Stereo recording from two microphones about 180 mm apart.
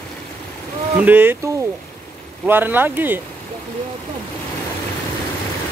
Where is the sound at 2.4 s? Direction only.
10° right (ahead or behind).